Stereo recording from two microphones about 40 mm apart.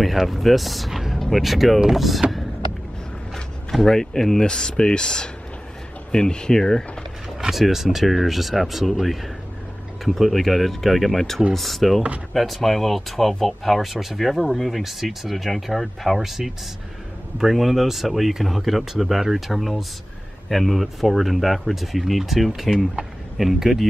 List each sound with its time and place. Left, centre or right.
0.0 s speech: centre
3.8 s speech: centre
7.3 s speech: centre